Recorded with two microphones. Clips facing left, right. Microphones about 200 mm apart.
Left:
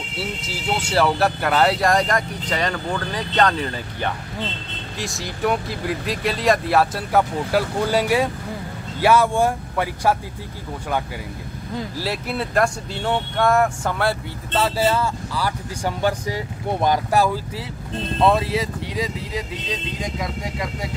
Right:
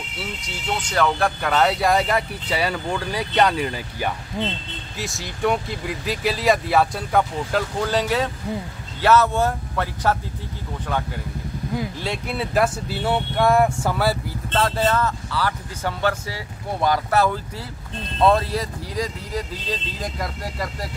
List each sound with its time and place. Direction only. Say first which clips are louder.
0.5 s speech: left 2 dB; 5° left (ahead or behind)
12.0 s speech: left 1 dB; 5° left (ahead or behind)
14.5 s speech: left 1 dB; 10° left (ahead or behind)